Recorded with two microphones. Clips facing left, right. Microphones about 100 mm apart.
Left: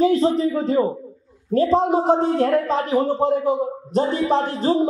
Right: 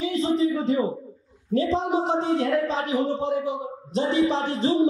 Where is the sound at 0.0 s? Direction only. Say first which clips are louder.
Left 5 dB; 45° left (ahead or behind).